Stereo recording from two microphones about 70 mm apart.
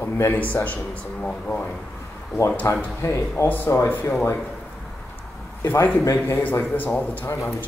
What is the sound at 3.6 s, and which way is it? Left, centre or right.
Speech, left.